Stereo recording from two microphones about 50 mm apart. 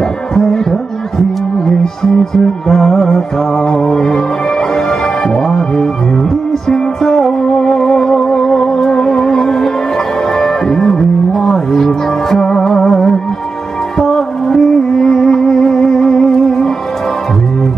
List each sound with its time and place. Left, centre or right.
0.3 s music: centre